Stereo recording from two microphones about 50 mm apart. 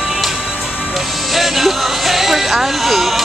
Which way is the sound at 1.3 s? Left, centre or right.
Centre.